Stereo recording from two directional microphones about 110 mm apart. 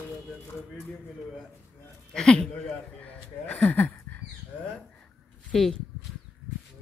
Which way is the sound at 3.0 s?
10° left (ahead or behind).